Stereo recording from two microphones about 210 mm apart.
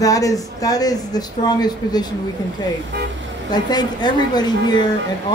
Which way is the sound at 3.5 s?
20° left (ahead or behind).